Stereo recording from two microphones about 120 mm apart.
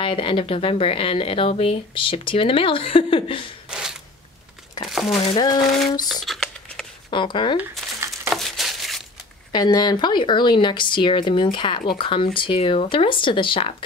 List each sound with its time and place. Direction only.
0.0 s speech: 45° left (ahead or behind)
3.6 s a sound: 5° right (ahead or behind)
4.8 s speech: centre (ahead or behind)
5.2 s speech: 35° left (ahead or behind)
5.6 s a sound: centre (ahead or behind)
6.2 s crumpling: centre (ahead or behind)
7.1 s speech: 40° left (ahead or behind)
8.3 s a sound: centre (ahead or behind)
9.5 s speech: 35° left (ahead or behind)